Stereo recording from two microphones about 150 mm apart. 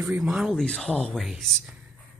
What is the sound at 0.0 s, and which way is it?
Speech, 10° right (ahead or behind).